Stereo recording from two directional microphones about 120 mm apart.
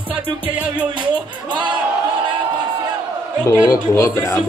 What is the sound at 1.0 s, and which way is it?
Speech, 40° right (ahead or behind).